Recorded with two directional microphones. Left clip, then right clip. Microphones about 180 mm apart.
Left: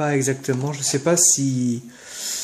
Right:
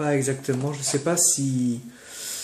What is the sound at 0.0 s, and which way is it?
Speech, 45° left (ahead or behind).